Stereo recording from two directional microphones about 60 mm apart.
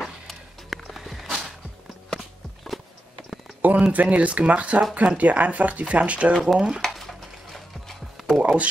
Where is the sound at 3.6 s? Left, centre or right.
Right.